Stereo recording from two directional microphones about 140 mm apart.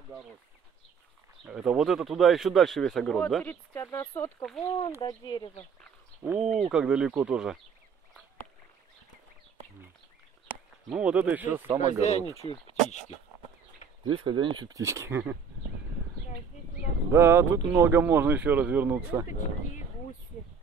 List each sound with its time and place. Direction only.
1.4 s speech: 5° right (ahead or behind)
3.8 s speech: 25° left (ahead or behind)
6.2 s speech: 5° right (ahead or behind)
10.9 s speech: 10° right (ahead or behind)
11.8 s speech: 50° left (ahead or behind)
14.0 s speech: 35° right (ahead or behind); by 15.3 s 15° right (ahead or behind)
17.1 s speech: 15° right (ahead or behind)
19.2 s speech: 65° left (ahead or behind)